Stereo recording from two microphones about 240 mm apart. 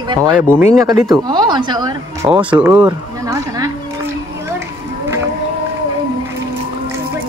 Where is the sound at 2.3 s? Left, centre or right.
Centre.